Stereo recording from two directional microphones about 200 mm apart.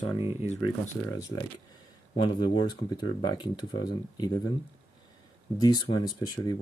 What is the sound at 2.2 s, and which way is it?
Speech, 25° left (ahead or behind).